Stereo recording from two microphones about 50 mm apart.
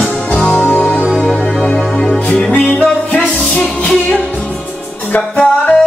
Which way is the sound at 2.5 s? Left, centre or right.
Left.